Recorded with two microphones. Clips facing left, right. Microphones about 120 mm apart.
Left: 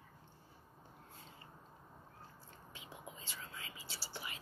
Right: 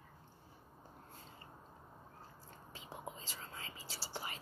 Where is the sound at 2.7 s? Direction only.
35° right (ahead or behind).